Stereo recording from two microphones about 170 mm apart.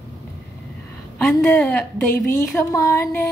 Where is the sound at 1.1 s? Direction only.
15° left (ahead or behind).